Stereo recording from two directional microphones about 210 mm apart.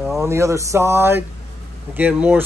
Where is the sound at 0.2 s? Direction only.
15° right (ahead or behind).